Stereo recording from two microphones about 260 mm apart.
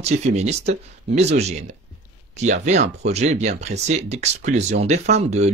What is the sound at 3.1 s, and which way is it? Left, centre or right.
Speech, right.